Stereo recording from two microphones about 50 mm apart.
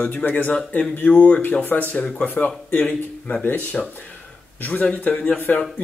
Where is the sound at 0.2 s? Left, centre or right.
Left.